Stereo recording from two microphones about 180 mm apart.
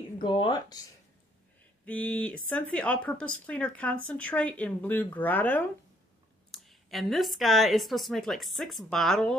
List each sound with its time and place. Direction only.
0.2 s speech: 25° left (ahead or behind)
1.9 s a woman's voice: 5° left (ahead or behind)